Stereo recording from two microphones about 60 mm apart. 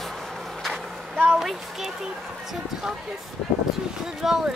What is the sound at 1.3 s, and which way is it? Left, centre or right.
Speech, centre.